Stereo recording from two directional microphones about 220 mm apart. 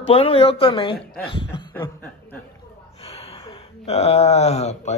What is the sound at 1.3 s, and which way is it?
Chuckle, 20° left (ahead or behind).